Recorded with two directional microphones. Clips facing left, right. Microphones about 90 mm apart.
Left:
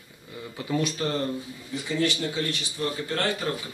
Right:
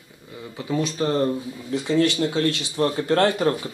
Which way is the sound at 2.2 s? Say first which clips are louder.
Right 7 dB; 80° right.